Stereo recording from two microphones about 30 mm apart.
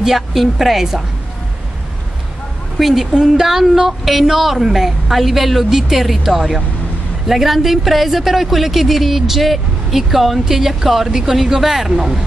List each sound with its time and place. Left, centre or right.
0.0 s a woman's voice: centre
2.8 s a woman's voice: centre